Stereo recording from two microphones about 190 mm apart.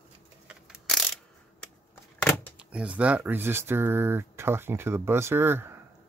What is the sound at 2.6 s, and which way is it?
Speech, 5° right (ahead or behind).